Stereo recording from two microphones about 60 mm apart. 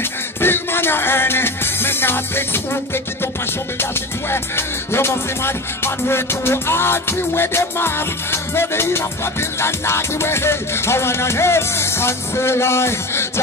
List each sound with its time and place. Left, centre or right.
0.4 s music: left